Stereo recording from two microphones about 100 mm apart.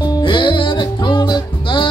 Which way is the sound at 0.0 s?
50° left (ahead or behind).